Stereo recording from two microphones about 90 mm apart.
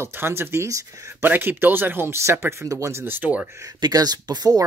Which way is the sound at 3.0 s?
20° right (ahead or behind).